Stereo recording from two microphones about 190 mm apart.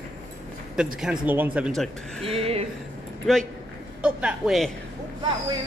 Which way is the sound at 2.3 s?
30° right (ahead or behind).